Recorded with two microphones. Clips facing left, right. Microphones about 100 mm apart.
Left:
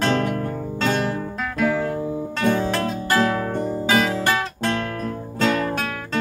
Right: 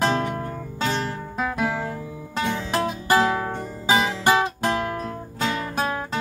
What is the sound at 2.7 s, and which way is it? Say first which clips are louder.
Music: right 1 dB; 15° right (ahead or behind).